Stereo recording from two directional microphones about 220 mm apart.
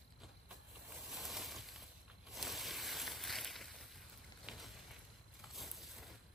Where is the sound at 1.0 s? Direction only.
Centre (ahead or behind).